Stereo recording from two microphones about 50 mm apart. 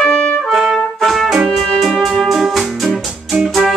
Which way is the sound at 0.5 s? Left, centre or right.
Centre.